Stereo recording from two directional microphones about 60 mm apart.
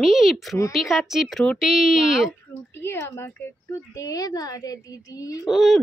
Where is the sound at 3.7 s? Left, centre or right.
Left.